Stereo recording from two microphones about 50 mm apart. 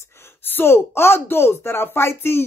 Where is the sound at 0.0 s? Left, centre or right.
Left.